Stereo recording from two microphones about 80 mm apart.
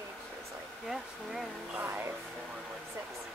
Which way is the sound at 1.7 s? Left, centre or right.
Right.